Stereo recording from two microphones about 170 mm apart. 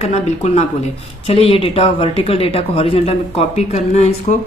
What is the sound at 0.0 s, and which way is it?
A woman's voice, 40° left (ahead or behind).